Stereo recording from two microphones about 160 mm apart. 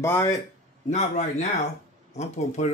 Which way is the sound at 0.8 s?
45° left (ahead or behind).